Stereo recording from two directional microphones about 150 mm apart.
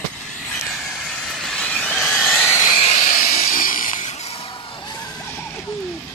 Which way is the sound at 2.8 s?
50° left (ahead or behind).